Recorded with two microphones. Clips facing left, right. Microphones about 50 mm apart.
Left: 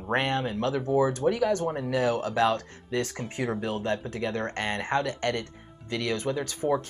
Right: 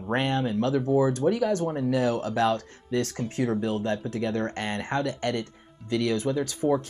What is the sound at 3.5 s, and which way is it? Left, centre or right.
Speech, centre.